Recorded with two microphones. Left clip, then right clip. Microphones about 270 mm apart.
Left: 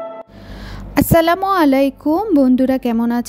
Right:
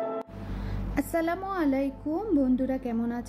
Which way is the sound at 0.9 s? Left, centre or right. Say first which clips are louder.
Left 15 dB; left.